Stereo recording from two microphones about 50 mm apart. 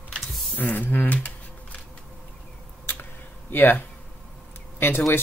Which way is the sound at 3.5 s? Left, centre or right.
Left.